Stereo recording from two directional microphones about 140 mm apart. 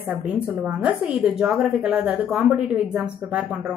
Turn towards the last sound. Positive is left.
turn(degrees=-10)  # may be behind; listen again after turning